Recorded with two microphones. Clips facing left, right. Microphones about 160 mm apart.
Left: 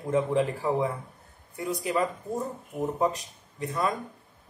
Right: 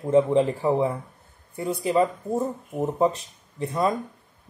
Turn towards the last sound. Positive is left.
turn(degrees=-30)  # may be behind; listen again after turning